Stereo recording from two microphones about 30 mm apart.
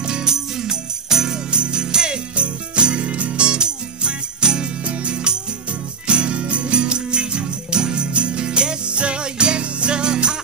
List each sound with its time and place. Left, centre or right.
0.0 s music: right
1.5 s jingle bell: right
2.3 s jingle bell: right
3.4 s music: right
4.8 s music: right
5.1 s music: right